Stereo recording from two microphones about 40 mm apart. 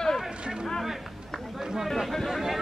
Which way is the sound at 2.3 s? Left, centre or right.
Centre.